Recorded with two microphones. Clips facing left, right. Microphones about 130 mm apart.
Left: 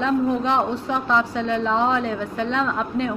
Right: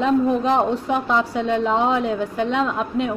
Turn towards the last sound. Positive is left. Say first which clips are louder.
# right 1 dB
turn(degrees=-15)  # may be behind; listen again after turning